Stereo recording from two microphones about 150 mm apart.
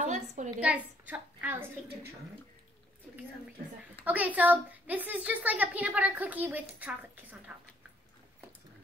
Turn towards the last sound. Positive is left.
turn(degrees=-10)  # may be behind; listen again after turning